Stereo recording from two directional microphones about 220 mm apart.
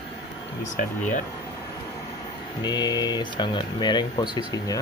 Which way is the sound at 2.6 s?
20° left (ahead or behind).